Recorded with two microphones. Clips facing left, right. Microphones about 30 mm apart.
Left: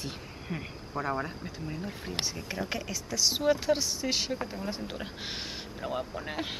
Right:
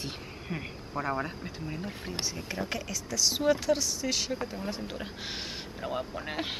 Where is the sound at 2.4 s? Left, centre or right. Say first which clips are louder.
Even; centre.